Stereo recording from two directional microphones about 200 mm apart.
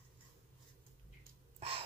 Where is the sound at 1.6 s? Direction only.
30° right (ahead or behind).